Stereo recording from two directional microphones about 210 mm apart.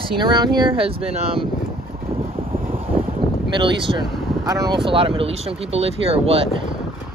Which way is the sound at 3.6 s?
25° right (ahead or behind).